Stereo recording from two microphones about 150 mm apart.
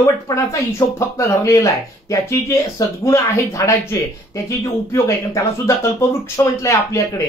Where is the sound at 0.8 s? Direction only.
20° left (ahead or behind).